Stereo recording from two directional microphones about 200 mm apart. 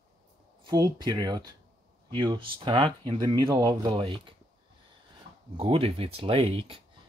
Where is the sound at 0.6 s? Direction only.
20° right (ahead or behind).